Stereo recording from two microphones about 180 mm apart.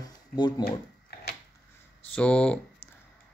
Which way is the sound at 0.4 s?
25° left (ahead or behind).